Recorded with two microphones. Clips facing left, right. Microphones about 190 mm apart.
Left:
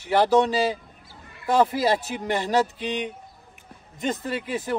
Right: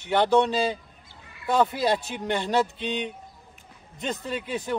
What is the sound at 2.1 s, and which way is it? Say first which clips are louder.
Speech: left 3 dB; 5° left (ahead or behind).